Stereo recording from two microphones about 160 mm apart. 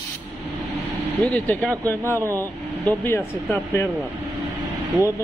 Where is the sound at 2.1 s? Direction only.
20° right (ahead or behind).